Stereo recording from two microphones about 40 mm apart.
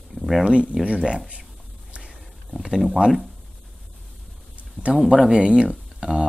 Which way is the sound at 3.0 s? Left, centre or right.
Right.